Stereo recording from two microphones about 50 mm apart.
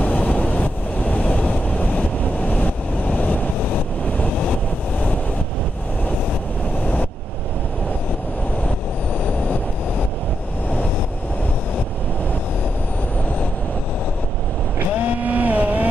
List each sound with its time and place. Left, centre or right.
0.0 s vehicle: left
15.0 s vehicle: right